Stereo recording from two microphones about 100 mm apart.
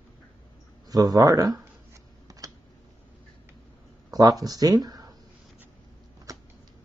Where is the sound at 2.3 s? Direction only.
35° right (ahead or behind).